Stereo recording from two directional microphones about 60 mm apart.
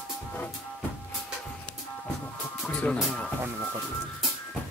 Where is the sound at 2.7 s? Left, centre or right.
Left.